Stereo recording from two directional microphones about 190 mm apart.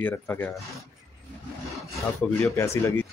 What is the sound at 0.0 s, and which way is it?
Speech, 10° left (ahead or behind).